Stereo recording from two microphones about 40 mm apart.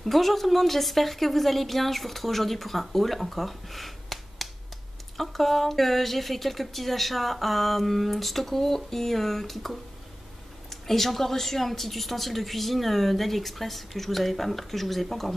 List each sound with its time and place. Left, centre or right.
0.0 s speech: centre